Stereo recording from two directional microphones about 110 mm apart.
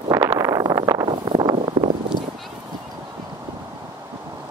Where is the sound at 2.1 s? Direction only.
45° left (ahead or behind).